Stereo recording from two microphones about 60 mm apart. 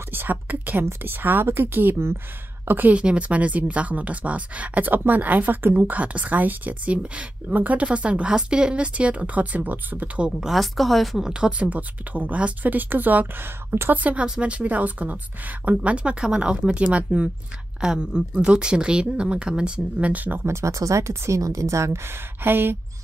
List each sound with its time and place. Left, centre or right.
0.1 s a woman's voice: right
10.5 s speech: centre
11.6 s a woman's voice: right
20.4 s a woman's voice: right